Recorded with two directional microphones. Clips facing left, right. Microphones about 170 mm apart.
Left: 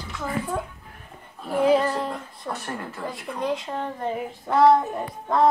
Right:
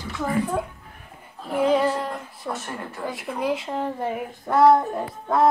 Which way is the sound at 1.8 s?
5° right (ahead or behind).